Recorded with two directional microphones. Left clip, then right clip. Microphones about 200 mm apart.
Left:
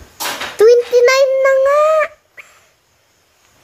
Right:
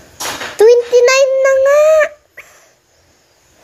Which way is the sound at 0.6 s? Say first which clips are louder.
Right 1 dB; centre (ahead or behind).